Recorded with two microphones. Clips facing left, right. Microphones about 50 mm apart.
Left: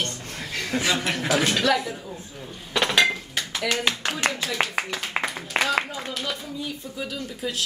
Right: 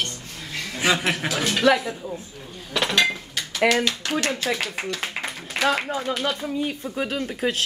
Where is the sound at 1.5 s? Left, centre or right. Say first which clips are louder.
Right 3 dB; centre.